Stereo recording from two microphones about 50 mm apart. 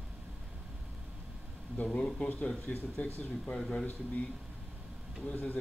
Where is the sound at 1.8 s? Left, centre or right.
Centre.